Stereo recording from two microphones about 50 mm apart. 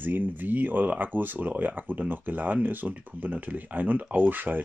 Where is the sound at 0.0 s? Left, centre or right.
Right.